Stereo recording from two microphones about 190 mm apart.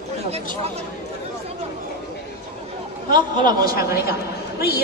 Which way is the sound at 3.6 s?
50° left (ahead or behind).